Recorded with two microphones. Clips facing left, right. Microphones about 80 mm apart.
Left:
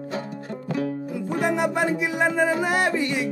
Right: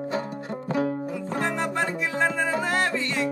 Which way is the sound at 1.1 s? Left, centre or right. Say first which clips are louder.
Left 3 dB; centre.